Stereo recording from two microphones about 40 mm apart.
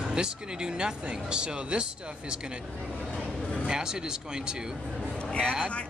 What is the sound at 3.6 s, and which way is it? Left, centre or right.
Speech, centre.